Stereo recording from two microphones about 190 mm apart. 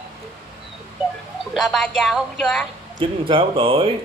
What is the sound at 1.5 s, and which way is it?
Speech, centre (ahead or behind).